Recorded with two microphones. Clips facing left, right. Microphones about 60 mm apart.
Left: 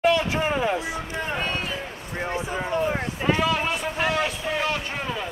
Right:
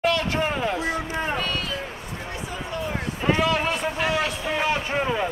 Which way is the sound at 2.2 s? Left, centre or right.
Left.